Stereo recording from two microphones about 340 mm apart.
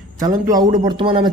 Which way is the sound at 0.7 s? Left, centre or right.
Centre.